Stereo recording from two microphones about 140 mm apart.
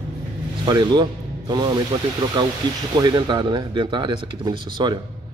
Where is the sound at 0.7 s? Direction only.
30° right (ahead or behind).